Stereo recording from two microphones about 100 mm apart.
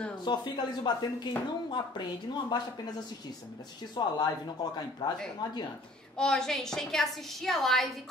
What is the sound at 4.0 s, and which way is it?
Speech, 50° left (ahead or behind).